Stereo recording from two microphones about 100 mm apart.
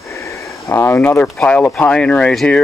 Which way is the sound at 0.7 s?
25° left (ahead or behind).